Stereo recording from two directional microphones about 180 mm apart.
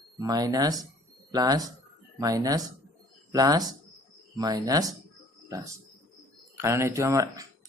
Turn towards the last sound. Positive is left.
turn(degrees=-15)  # may be behind; listen again after turning